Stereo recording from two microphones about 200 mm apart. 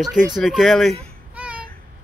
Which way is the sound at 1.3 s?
5° right (ahead or behind).